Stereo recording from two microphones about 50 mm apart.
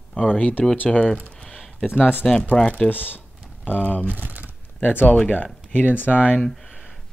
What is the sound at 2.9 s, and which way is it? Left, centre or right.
Speech, left.